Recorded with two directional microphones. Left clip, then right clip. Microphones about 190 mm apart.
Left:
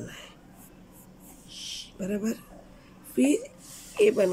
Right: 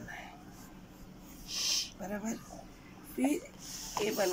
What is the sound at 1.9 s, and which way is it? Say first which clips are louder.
Speech: left 8 dB; 65° left (ahead or behind).